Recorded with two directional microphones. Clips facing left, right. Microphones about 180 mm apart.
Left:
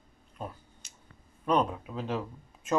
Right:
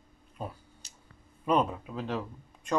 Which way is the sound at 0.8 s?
35° right (ahead or behind).